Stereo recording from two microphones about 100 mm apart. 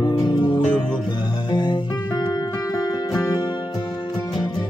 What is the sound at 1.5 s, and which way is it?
Music, 50° left (ahead or behind).